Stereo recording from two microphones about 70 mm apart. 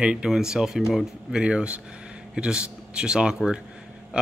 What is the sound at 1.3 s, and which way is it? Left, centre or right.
Speech, centre.